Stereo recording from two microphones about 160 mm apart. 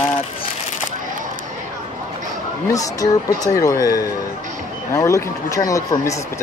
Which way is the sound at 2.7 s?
20° left (ahead or behind).